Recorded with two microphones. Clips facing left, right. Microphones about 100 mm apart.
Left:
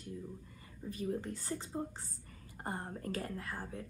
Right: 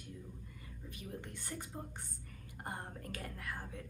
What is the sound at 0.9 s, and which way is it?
Speech, 40° left (ahead or behind).